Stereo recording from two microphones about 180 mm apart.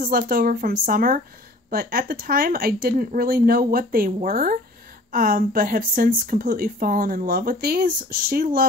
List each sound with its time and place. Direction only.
0.0 s speech: 55° right (ahead or behind)